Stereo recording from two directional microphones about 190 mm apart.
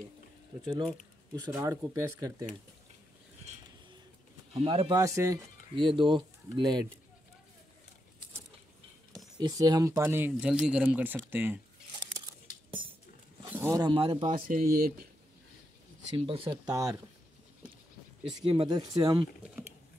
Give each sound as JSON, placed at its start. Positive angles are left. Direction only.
{"t": 1.3, "sound": "speech", "side_deg": -15}
{"t": 4.6, "sound": "speech", "side_deg": -30}
{"t": 9.4, "sound": "speech", "side_deg": -20}
{"t": 13.4, "sound": "speech", "side_deg": -10}
{"t": 14.5, "sound": "speech", "side_deg": -50}
{"t": 16.2, "sound": "speech", "side_deg": -30}
{"t": 16.4, "sound": "speech", "side_deg": -15}
{"t": 18.5, "sound": "speech", "side_deg": -25}